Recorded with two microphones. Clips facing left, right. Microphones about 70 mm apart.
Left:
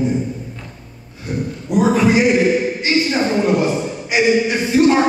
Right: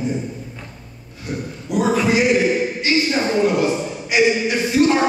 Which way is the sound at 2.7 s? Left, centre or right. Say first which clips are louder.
Left 1 dB; left.